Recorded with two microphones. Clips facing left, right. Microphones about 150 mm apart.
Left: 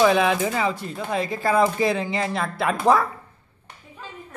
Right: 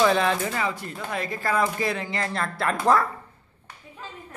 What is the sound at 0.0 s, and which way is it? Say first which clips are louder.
Speech: left 3 dB; 10° left (ahead or behind).